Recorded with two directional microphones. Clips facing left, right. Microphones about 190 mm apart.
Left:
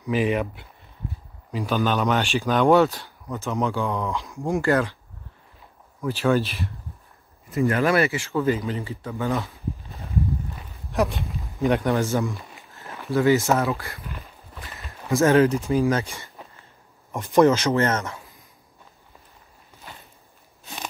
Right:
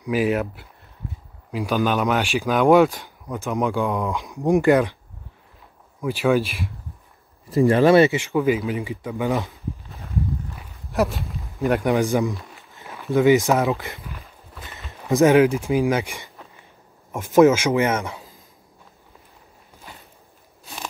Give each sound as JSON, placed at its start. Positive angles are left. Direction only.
{"t": 0.0, "sound": "speech", "side_deg": -5}
{"t": 5.9, "sound": "speech", "side_deg": -10}
{"t": 7.4, "sound": "speech", "side_deg": -30}
{"t": 9.8, "sound": "a sound", "side_deg": 0}
{"t": 11.0, "sound": "speech", "side_deg": 0}
{"t": 11.8, "sound": "speech", "side_deg": -15}
{"t": 14.5, "sound": "a sound", "side_deg": 0}
{"t": 15.0, "sound": "speech", "side_deg": -15}